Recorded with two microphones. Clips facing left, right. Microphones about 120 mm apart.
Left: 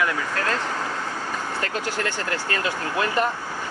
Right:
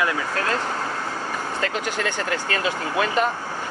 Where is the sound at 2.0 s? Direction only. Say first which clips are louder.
Right 2 dB; 20° right (ahead or behind).